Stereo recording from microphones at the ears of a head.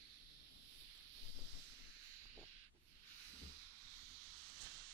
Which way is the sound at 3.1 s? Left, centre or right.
Right.